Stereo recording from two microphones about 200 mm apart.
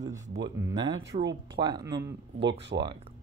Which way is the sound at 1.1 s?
35° right (ahead or behind).